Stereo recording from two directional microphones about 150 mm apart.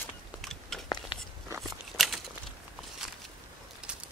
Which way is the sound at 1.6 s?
Centre (ahead or behind).